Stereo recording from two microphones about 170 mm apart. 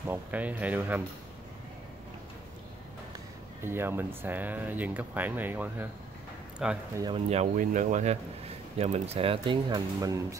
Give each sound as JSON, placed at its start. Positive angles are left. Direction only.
{"t": 0.1, "sound": "speech", "side_deg": -10}
{"t": 3.6, "sound": "speech", "side_deg": -15}
{"t": 7.2, "sound": "speech", "side_deg": -45}